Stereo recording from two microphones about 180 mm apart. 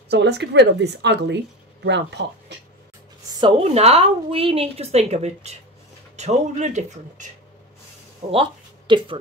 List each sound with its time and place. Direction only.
0.1 s a woman's voice: 70° right (ahead or behind)
3.3 s a woman's voice: 30° right (ahead or behind)
8.3 s speech: 30° right (ahead or behind)